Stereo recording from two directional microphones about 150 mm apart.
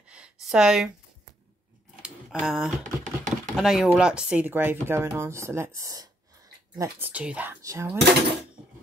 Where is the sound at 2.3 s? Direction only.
5° right (ahead or behind); by 6.9 s 25° right (ahead or behind).